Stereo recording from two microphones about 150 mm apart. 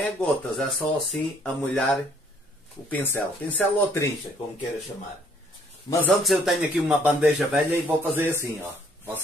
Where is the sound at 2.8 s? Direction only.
15° left (ahead or behind).